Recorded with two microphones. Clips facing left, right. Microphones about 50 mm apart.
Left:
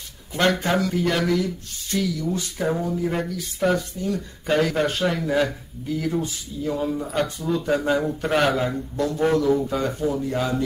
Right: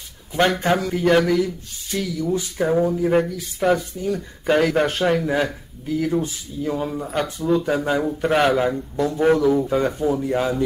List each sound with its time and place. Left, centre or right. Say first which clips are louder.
0.4 s speech: right 2 dB; right
2.8 s speech: right 6 dB; right
3.3 s speech: right 3 dB; centre; by 5.0 s right
5.0 s speech: right 2 dB; centre
10.2 s speech: right 3 dB; right